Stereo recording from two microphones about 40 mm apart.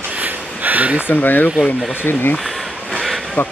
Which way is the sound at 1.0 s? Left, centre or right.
Left.